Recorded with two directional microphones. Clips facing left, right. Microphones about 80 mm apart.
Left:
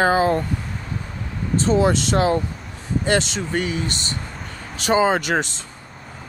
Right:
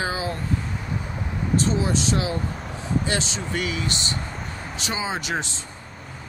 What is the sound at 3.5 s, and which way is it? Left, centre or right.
Speech, left.